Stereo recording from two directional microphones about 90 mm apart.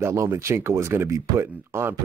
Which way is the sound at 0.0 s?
30° right (ahead or behind).